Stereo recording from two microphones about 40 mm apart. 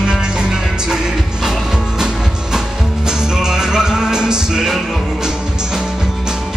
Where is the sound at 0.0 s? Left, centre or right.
Centre.